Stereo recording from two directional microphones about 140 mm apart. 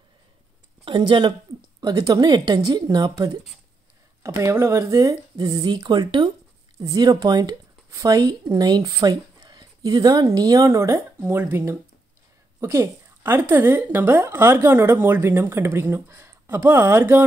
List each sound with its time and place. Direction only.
0.8 s a woman's voice: 35° right (ahead or behind); by 17.2 s 15° right (ahead or behind)